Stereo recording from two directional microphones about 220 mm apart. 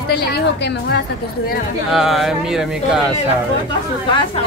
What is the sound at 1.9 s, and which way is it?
Speech, centre (ahead or behind).